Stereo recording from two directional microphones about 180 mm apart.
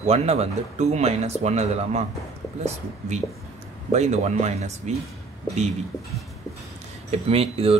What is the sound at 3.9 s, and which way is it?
Speech, 40° right (ahead or behind).